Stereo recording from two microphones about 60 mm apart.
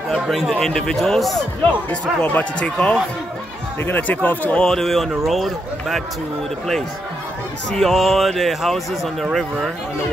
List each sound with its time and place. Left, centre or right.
0.1 s a man's voice: centre
1.9 s speech: left
3.8 s speech: left
4.6 s speech: centre
7.7 s speech: centre